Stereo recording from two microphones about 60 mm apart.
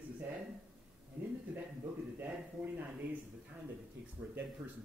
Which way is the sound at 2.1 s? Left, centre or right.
Right.